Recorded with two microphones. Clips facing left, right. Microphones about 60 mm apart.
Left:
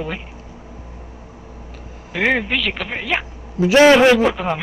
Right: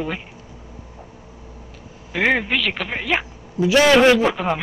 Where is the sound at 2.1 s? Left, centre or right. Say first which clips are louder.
Even; centre.